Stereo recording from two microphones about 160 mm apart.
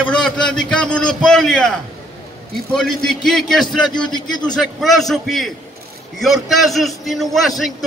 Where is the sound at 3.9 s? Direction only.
25° left (ahead or behind).